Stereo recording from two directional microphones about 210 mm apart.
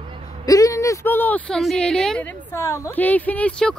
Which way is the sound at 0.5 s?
15° left (ahead or behind).